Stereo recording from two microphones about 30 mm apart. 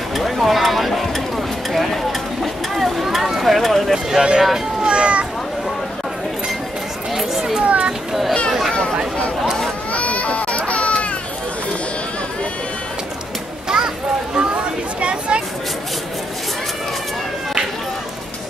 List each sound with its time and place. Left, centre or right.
0.1 s speech: centre
2.7 s a sound: centre
3.4 s speech: centre
4.2 s speech: right
4.8 s cat: right
7.2 s children playing: centre
7.6 s children playing: right
9.9 s baby cry: left
13.7 s a sound: right
14.3 s chatter: right